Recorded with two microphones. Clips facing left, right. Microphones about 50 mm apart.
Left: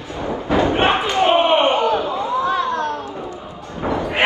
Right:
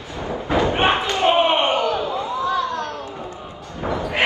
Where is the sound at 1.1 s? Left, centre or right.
Left.